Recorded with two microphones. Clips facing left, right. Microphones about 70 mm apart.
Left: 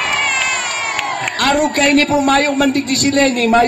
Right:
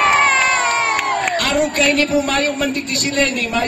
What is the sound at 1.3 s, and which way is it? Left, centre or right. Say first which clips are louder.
A man's voice: left 3 dB; left.